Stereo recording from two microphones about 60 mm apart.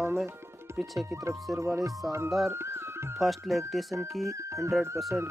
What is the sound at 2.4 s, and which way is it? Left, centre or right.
Music, right.